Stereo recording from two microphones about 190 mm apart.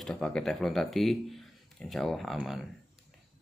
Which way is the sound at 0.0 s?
5° left (ahead or behind).